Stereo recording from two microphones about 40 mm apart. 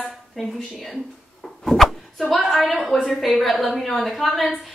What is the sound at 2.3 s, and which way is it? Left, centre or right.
Speech, centre.